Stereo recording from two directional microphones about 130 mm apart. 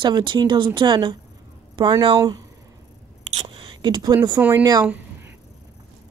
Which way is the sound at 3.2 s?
50° right (ahead or behind).